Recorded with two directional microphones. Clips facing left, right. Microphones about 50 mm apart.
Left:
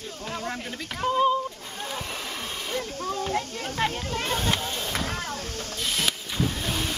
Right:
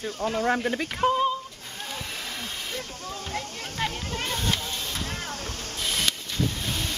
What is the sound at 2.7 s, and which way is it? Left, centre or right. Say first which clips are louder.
Speech: left 6 dB; centre.